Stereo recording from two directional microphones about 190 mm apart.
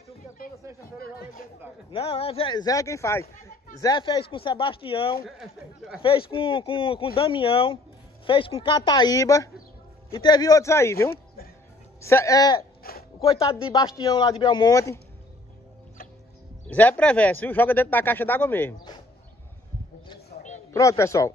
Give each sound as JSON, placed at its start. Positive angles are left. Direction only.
{"t": 0.9, "sound": "speech", "side_deg": 50}
{"t": 1.9, "sound": "speech", "side_deg": 30}
{"t": 5.4, "sound": "speech", "side_deg": 0}
{"t": 6.0, "sound": "speech", "side_deg": 25}
{"t": 12.9, "sound": "speech", "side_deg": 50}
{"t": 13.4, "sound": "speech", "side_deg": 25}
{"t": 16.6, "sound": "speech", "side_deg": 10}
{"t": 18.8, "sound": "a sound", "side_deg": 20}
{"t": 20.7, "sound": "speech", "side_deg": 15}